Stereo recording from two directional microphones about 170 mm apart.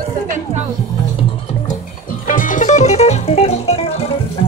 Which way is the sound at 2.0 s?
50° left (ahead or behind).